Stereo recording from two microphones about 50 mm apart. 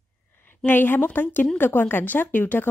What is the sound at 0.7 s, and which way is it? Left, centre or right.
A woman's voice, left.